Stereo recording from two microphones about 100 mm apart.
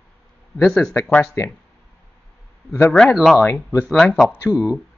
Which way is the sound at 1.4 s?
30° left (ahead or behind).